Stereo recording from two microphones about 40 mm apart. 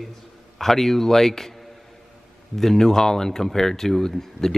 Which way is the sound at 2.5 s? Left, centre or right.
Centre.